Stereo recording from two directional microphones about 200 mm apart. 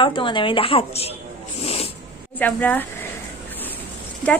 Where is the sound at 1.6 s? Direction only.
30° left (ahead or behind).